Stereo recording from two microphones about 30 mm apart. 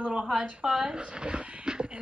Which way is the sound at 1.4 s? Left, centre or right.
Right.